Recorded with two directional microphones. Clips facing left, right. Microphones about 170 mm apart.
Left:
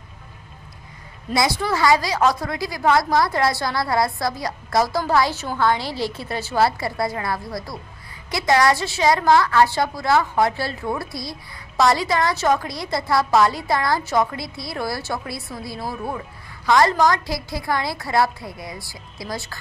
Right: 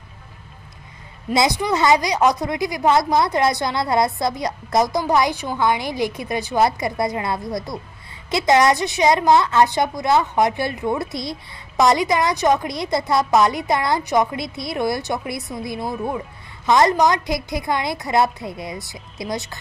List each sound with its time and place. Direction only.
1.3 s a woman's voice: 20° right (ahead or behind)
15.8 s speech: 5° left (ahead or behind)
16.6 s a woman's voice: 20° right (ahead or behind)